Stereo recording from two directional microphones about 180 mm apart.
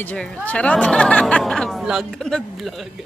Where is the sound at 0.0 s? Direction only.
10° left (ahead or behind).